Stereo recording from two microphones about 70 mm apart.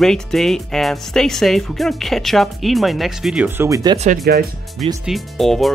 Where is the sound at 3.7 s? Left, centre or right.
Right.